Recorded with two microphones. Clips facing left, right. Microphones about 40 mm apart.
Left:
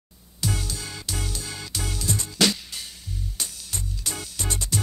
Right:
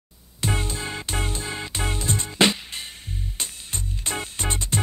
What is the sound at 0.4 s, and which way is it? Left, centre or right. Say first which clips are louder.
Music: right 3 dB; right.